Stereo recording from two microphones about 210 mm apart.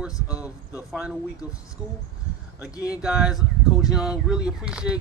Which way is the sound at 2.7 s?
15° left (ahead or behind).